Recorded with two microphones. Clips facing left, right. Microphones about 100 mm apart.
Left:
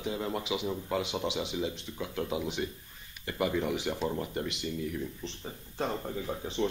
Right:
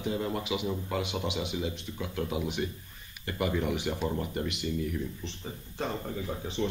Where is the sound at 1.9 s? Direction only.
5° left (ahead or behind).